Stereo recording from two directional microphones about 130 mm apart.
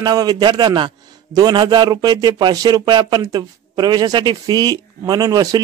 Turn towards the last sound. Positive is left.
turn(degrees=-30)  # may be behind; listen again after turning